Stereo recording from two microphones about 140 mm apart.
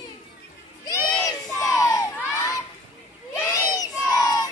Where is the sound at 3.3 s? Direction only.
20° left (ahead or behind).